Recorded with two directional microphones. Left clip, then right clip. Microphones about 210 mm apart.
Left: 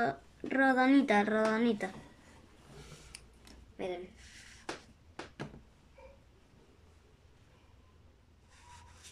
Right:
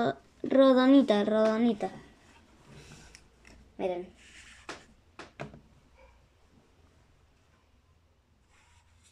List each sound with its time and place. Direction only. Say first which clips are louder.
0.0 s speech: right 3 dB; 20° right (ahead or behind)
3.7 s speech: right 7 dB; 15° right (ahead or behind)